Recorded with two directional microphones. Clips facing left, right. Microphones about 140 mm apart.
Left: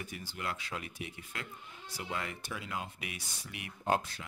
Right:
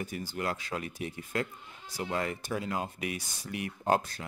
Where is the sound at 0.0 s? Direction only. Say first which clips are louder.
Right 6 dB; 45° right (ahead or behind).